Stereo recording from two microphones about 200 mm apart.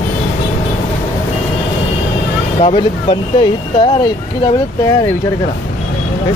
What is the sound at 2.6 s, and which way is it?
Speech, 30° left (ahead or behind).